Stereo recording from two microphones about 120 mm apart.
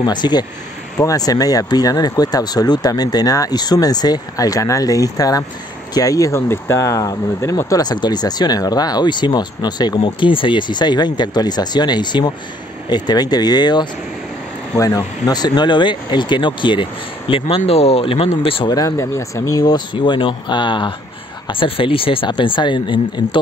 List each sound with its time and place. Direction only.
0.0 s speech: 35° left (ahead or behind)
18.7 s speech: 30° left (ahead or behind)